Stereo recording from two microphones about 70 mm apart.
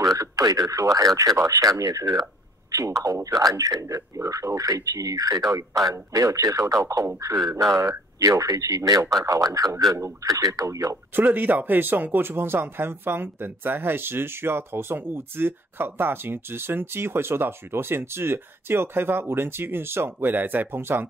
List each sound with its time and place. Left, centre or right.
0.0 s speech: right
2.7 s speech: right
7.7 s speech: right
11.1 s speech: right